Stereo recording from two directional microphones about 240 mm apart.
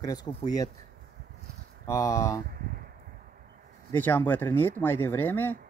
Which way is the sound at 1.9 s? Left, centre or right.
Centre.